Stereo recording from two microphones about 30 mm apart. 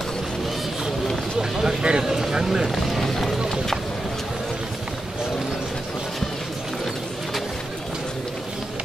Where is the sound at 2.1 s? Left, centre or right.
Centre.